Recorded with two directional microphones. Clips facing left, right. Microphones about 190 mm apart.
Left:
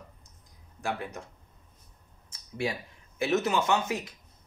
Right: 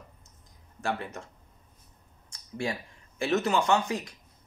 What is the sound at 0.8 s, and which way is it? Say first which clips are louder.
Speech: right 1 dB; 15° left (ahead or behind).